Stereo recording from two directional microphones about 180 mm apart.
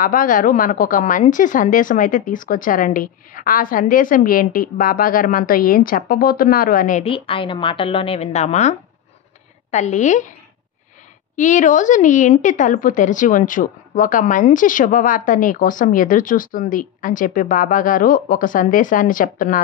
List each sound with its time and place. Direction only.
0.0 s a woman's voice: 50° left (ahead or behind)
7.0 s a woman's voice: 30° left (ahead or behind)
11.3 s a woman's voice: 45° left (ahead or behind)